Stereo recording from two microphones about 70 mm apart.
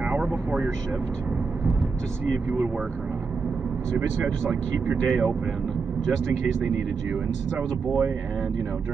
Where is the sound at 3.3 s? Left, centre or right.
Centre.